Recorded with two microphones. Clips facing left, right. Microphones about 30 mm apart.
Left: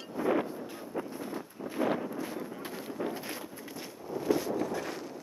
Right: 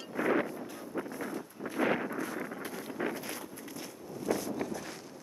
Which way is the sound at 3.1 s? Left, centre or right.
Centre.